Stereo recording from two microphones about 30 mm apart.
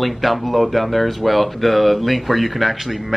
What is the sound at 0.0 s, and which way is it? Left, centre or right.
Speech, centre.